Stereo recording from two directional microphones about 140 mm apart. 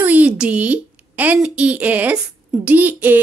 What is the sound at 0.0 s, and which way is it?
A woman's voice, 10° right (ahead or behind).